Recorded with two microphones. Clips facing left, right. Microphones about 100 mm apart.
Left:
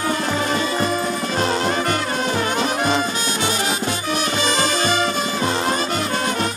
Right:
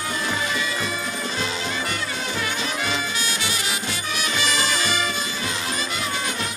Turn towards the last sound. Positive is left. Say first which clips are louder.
# left 6 dB
turn(degrees=50)  # may be behind; listen again after turning